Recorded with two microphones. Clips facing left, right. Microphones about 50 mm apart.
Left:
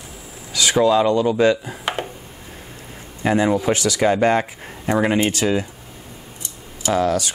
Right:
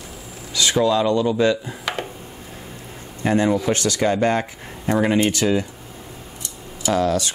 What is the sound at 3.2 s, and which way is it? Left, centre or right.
Speech, centre.